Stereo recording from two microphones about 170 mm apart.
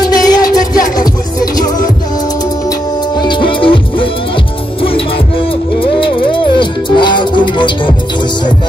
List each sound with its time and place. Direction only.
0.0 s music: 20° left (ahead or behind)
3.2 s music: 30° left (ahead or behind)
5.8 s music: 30° left (ahead or behind)